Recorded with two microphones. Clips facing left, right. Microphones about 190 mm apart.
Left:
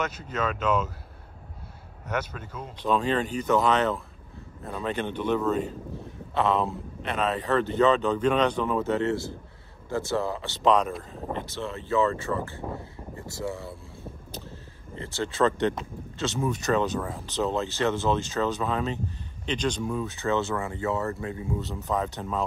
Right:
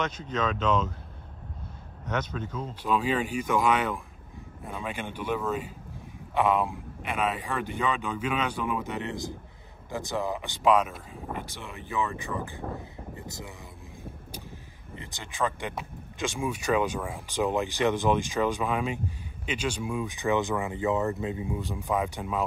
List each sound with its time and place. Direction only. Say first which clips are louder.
0.0 s speech: even; 5° left (ahead or behind)
2.0 s speech: even; 10° left (ahead or behind)
2.8 s speech: left 2 dB; 10° right (ahead or behind)